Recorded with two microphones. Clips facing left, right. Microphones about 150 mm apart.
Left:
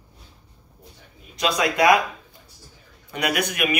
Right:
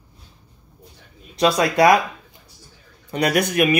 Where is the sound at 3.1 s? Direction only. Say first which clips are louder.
Right 6 dB; 35° right (ahead or behind).